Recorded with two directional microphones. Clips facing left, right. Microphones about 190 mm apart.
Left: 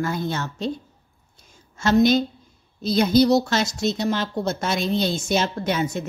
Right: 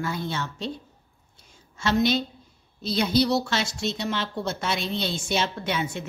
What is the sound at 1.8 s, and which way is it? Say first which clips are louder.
Speech: left 6 dB; 45° left (ahead or behind).